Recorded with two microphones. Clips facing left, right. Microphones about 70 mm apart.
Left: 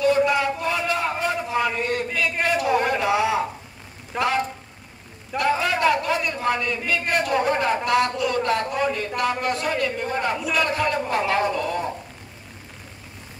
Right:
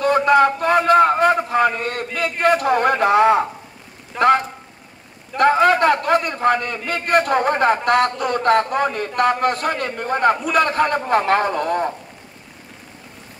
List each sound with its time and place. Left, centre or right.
0.0 s a sound: right
2.4 s a man's voice: right
4.1 s a man's voice: centre
5.4 s a man's voice: right